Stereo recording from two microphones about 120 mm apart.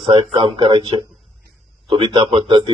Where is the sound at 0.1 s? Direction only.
45° right (ahead or behind).